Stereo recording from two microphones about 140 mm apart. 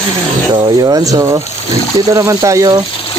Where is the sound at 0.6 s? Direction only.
30° right (ahead or behind).